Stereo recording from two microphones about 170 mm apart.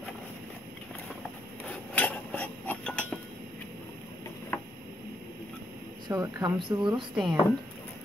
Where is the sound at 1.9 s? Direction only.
10° left (ahead or behind).